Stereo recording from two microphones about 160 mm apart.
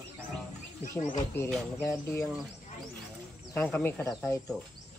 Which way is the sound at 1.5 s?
15° left (ahead or behind).